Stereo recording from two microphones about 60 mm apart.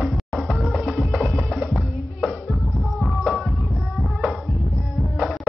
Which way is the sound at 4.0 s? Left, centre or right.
Centre.